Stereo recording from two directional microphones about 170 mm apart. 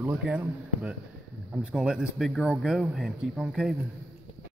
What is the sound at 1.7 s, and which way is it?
A man's voice, centre (ahead or behind).